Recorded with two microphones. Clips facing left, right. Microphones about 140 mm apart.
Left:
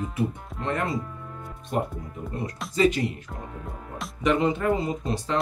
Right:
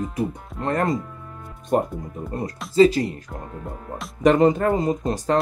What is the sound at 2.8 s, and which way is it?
Speech, 35° right (ahead or behind).